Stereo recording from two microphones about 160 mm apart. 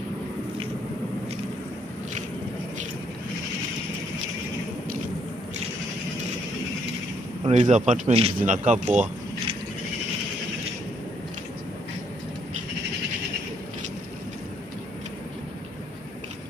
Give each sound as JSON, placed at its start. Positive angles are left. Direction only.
{"t": 7.4, "sound": "speech", "side_deg": -45}